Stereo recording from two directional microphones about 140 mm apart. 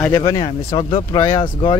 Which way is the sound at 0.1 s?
25° left (ahead or behind).